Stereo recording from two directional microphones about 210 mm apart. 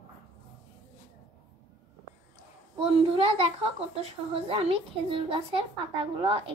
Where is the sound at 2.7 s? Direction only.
25° right (ahead or behind).